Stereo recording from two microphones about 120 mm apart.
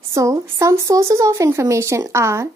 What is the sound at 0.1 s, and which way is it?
Speech, 25° right (ahead or behind).